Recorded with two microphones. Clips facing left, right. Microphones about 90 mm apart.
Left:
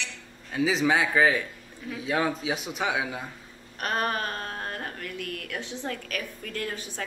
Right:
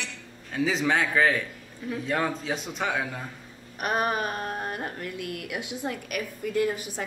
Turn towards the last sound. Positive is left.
turn(degrees=-10)  # may be behind; listen again after turning